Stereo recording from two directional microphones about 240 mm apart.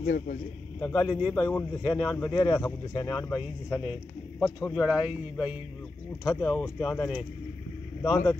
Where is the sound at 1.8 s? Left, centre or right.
Centre.